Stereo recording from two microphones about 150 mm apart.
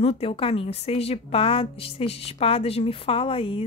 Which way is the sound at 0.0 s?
40° left (ahead or behind).